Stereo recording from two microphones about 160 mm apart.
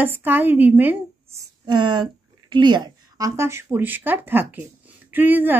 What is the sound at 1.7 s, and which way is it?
A woman's voice, 30° right (ahead or behind).